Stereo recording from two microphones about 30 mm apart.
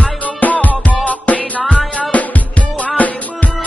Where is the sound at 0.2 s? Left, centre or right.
Left.